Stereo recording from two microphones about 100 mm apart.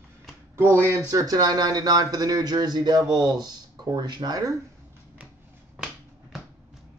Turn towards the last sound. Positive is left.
turn(degrees=-5)  # may be behind; listen again after turning